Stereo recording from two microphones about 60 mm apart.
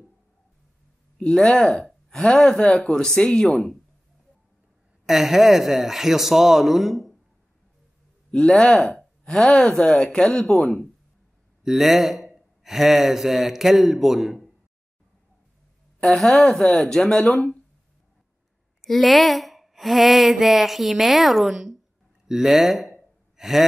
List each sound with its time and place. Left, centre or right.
1.2 s speech: centre
5.0 s speech: centre
8.3 s speech: centre
8.5 s speech: centre
8.9 s a sound: centre
9.4 s speech: centre
11.6 s speech: centre
16.0 s speech: centre
18.9 s speech: centre
23.3 s gasp: centre